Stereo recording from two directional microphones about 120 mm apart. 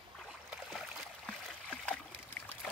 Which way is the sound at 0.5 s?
Centre (ahead or behind).